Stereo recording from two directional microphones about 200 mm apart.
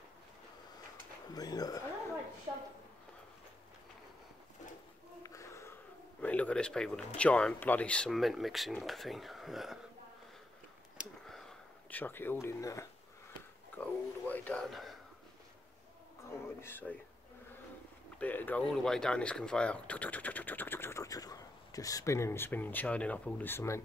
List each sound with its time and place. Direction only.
1.3 s speech: 20° left (ahead or behind)
5.2 s a sound: 15° left (ahead or behind)
6.2 s speech: 5° left (ahead or behind)
11.0 s a sound: centre (ahead or behind)
13.7 s speech: 10° left (ahead or behind)
16.3 s speech: 10° left (ahead or behind)
18.2 s speech: 10° left (ahead or behind)